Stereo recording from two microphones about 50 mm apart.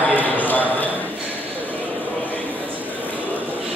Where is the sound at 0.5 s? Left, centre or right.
Left.